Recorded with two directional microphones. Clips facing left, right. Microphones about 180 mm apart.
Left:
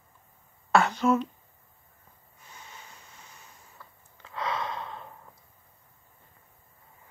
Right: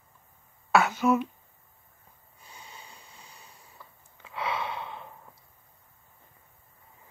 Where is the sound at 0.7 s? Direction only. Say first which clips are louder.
Even; 5° right (ahead or behind).